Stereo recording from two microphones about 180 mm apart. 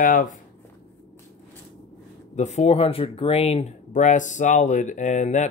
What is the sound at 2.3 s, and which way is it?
Speech, 40° left (ahead or behind).